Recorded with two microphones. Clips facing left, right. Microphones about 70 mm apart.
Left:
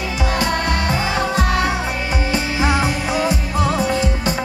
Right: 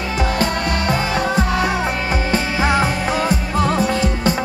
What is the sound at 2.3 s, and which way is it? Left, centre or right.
Music, right.